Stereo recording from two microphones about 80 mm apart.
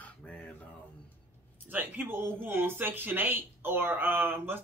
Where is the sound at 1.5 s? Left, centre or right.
Right.